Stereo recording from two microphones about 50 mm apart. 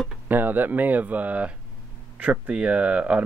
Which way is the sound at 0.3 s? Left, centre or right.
Right.